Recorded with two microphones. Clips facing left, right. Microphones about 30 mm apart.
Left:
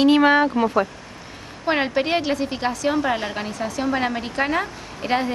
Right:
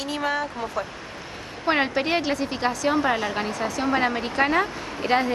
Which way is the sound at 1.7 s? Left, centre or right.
Centre.